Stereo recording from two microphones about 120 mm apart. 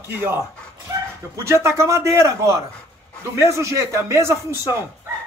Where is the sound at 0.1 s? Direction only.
20° right (ahead or behind).